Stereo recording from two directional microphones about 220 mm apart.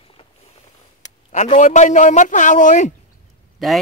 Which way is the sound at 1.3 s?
30° left (ahead or behind).